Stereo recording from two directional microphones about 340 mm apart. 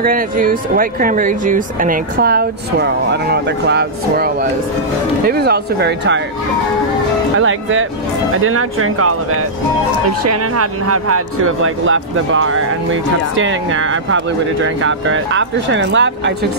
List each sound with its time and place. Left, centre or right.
0.0 s speech: right
7.3 s speech: right
10.2 s speech: right